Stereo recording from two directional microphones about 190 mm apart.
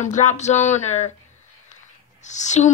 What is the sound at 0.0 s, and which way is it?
A woman's voice, 40° left (ahead or behind).